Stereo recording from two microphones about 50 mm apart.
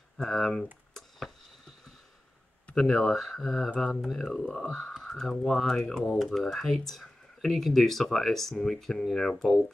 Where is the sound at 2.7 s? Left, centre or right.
Centre.